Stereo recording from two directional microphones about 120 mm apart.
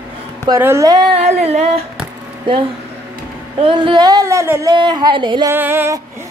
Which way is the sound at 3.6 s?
40° right (ahead or behind).